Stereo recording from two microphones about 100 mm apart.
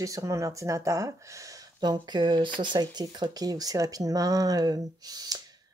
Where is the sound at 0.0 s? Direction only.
35° right (ahead or behind).